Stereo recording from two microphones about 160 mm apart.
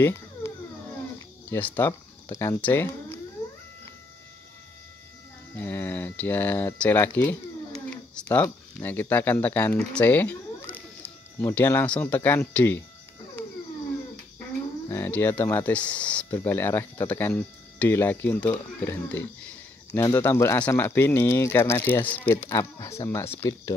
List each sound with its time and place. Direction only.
0.0 s a sound: 15° left (ahead or behind)
1.5 s speech: 10° left (ahead or behind)
5.6 s speech: 10° left (ahead or behind)
14.9 s speech: 15° left (ahead or behind)